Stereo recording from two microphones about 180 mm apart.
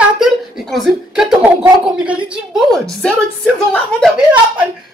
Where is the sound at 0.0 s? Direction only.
Centre (ahead or behind).